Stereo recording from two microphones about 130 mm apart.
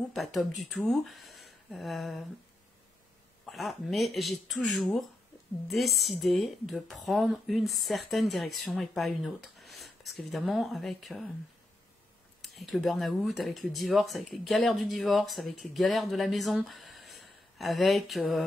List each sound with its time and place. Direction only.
0.1 s speech: centre (ahead or behind)
3.4 s speech: centre (ahead or behind)
12.4 s speech: centre (ahead or behind)
16.6 s a sound: centre (ahead or behind)